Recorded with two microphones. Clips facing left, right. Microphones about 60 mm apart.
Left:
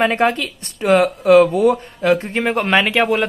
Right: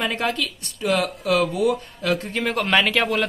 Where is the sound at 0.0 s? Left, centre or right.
Left.